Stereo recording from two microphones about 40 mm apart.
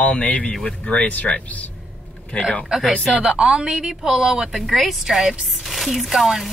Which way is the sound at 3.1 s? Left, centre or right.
Right.